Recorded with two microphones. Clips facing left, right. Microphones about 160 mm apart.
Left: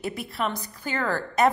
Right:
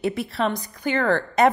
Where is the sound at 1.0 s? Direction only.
60° right (ahead or behind).